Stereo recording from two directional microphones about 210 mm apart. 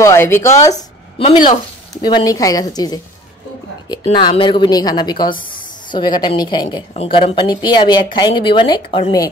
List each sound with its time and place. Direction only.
0.0 s a woman's voice: 10° left (ahead or behind)
2.0 s a woman's voice: 20° left (ahead or behind)